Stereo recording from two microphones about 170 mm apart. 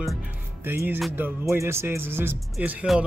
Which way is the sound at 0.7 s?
10° right (ahead or behind).